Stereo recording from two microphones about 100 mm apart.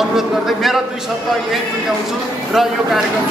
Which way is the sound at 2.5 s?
5° right (ahead or behind).